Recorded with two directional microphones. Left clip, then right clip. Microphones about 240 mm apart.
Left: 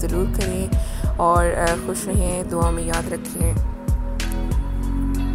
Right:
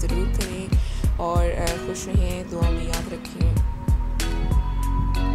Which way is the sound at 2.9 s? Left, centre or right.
Centre.